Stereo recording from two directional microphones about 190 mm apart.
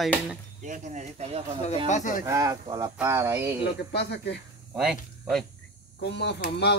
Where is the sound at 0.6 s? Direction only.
40° right (ahead or behind).